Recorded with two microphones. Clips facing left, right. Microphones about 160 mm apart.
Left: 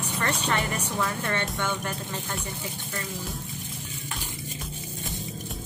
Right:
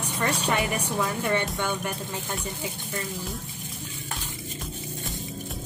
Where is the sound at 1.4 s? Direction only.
Centre (ahead or behind).